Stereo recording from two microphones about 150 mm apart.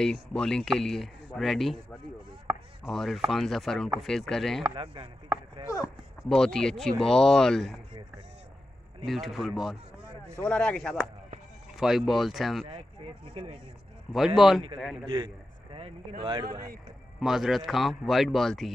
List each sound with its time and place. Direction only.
0.0 s speech: 5° left (ahead or behind)
2.4 s chopping: centre (ahead or behind)
3.3 s speech: centre (ahead or behind)
4.7 s chopping: 35° right (ahead or behind)
6.2 s speech: 5° left (ahead or behind)
9.0 s speech: centre (ahead or behind)
13.3 s chopping: 40° right (ahead or behind)
14.1 s speech: centre (ahead or behind)
15.0 s a sound: 30° right (ahead or behind)
16.2 s chopping: 30° right (ahead or behind)
17.2 s speech: centre (ahead or behind)